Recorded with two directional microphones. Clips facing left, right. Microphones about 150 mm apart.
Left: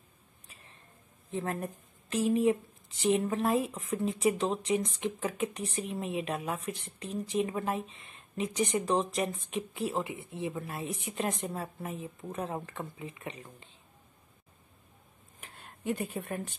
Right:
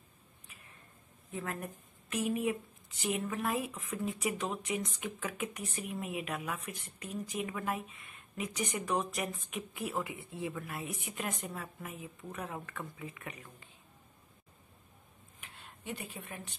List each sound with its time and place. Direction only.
0.5 s a sound: 30° left (ahead or behind)
1.3 s speech: 30° left (ahead or behind)
15.4 s speech: 45° left (ahead or behind)